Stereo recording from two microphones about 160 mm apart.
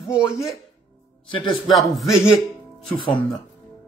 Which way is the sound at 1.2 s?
30° left (ahead or behind).